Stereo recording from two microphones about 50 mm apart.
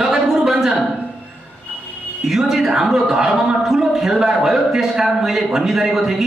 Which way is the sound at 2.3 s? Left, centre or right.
Centre.